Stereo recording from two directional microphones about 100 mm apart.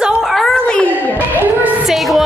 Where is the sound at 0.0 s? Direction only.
Centre (ahead or behind).